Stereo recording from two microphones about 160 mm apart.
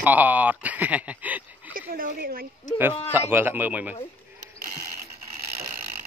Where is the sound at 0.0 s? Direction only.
10° right (ahead or behind).